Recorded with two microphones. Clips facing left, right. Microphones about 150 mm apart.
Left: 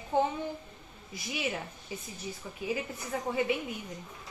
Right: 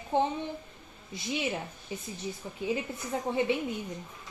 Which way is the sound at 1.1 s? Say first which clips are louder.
Right 4 dB; 25° right (ahead or behind).